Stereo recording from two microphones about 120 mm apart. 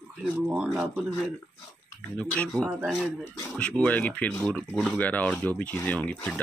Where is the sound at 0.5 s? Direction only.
10° right (ahead or behind).